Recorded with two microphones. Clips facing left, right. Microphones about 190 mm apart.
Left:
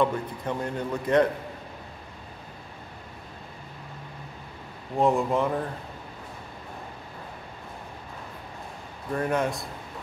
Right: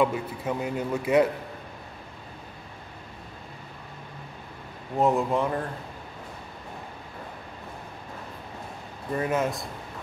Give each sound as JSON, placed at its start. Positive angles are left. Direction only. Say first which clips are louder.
{"t": 0.0, "sound": "a man's voice", "louder": "right 1 dB", "side_deg": -5}
{"t": 4.9, "sound": "speech", "louder": "even", "side_deg": 0}
{"t": 9.1, "sound": "speech", "louder": "even", "side_deg": -5}